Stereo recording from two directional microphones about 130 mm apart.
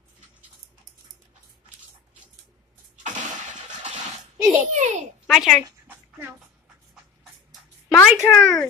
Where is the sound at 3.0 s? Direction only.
70° right (ahead or behind).